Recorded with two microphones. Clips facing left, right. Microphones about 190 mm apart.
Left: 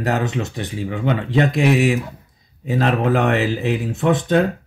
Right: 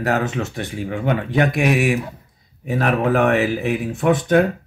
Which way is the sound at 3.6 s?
20° left (ahead or behind).